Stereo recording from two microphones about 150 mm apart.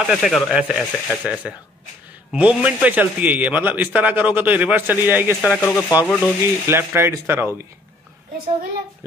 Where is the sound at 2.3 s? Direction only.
10° right (ahead or behind).